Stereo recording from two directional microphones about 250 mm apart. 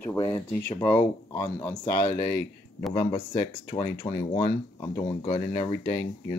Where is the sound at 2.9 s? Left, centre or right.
Centre.